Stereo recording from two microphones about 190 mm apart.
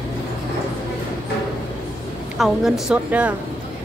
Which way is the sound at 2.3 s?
5° right (ahead or behind).